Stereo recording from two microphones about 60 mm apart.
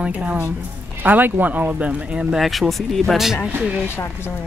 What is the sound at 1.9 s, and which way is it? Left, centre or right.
Speech, centre.